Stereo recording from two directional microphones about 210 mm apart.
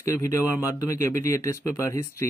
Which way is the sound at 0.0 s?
15° left (ahead or behind).